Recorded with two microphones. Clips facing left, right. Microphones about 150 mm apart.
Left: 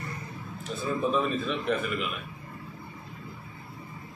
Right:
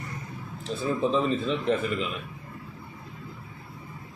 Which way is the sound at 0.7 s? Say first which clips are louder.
Right 2 dB; 25° right (ahead or behind).